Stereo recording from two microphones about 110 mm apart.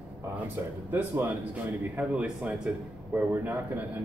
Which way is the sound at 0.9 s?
25° right (ahead or behind).